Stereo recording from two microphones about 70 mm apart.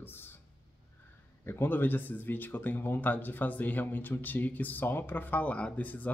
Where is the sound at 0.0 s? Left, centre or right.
Left.